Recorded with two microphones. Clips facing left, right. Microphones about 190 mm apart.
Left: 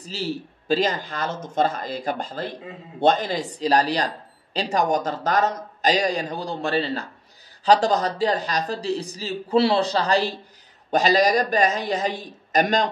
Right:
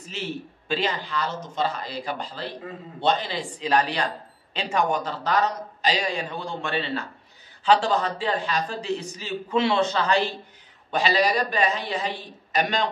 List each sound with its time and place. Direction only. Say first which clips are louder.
0.0 s speech: left 4 dB; 35° left (ahead or behind)